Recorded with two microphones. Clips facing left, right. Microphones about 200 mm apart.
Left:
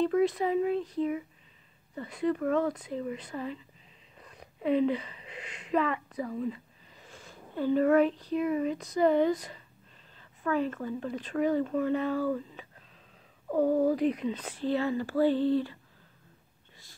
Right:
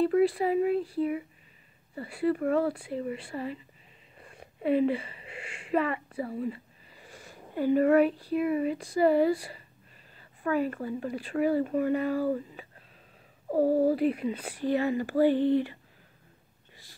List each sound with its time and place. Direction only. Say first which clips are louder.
0.0 s speech: right 2 dB; 5° right (ahead or behind)
4.3 s a sound: right 1 dB; 5° right (ahead or behind)
6.3 s speech: even; 10° right (ahead or behind)
13.5 s speech: right 1 dB; 35° right (ahead or behind)
13.9 s speech: right 1 dB; 5° right (ahead or behind)